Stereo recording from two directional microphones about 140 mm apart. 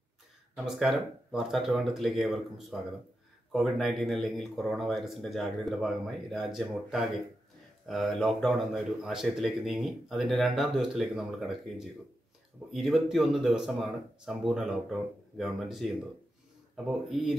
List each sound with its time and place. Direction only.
0.6 s speech: centre (ahead or behind)